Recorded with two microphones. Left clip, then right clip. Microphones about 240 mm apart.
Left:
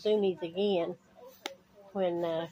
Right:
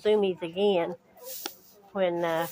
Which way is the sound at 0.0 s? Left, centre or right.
Centre.